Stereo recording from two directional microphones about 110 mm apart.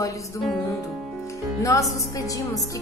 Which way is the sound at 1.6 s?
30° left (ahead or behind).